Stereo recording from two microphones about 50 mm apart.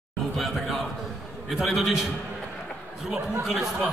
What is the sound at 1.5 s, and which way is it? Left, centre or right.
Speech, centre.